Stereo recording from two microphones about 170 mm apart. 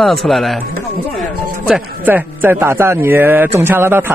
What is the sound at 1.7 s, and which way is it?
A man's voice, 10° right (ahead or behind).